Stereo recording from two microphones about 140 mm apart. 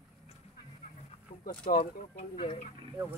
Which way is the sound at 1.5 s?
40° left (ahead or behind).